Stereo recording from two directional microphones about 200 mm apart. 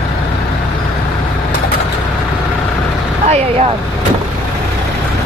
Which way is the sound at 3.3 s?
30° right (ahead or behind).